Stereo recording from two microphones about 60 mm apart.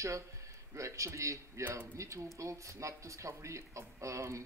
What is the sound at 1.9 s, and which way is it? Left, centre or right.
Speech, right.